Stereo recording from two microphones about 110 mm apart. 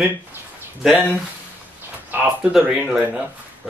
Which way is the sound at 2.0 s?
15° right (ahead or behind).